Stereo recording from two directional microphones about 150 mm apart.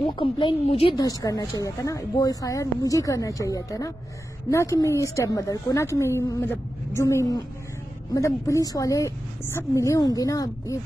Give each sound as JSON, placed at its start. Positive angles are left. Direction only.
{"t": 0.0, "sound": "a woman's voice", "side_deg": 35}
{"t": 0.9, "sound": "a woman's voice", "side_deg": 25}